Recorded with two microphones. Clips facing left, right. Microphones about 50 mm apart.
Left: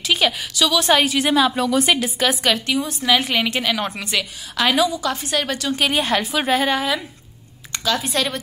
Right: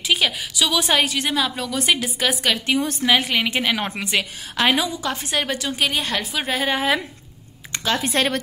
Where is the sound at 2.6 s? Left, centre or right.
Right.